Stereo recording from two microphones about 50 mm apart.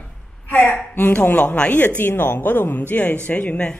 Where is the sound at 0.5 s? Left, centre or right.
Left.